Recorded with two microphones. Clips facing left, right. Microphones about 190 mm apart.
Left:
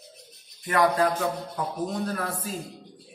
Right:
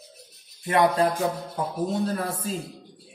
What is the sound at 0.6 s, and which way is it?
Speech, 25° right (ahead or behind).